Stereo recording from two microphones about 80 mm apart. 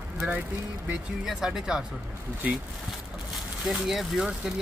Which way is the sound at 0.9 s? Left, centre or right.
Centre.